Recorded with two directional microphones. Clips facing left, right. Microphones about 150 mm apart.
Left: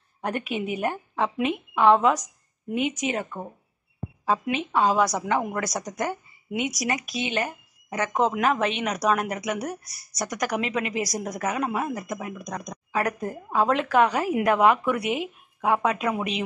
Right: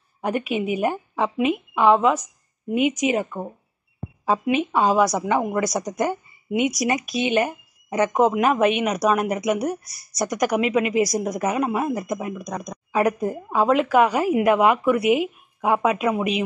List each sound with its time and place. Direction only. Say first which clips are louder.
0.2 s speech: right 5 dB; 10° right (ahead or behind)
12.4 s speech: right 4 dB; 10° right (ahead or behind)